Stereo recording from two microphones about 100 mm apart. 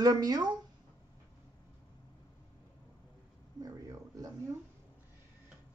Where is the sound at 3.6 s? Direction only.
35° right (ahead or behind).